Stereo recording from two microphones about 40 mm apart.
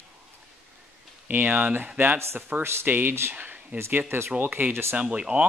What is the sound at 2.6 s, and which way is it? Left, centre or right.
Speech, right.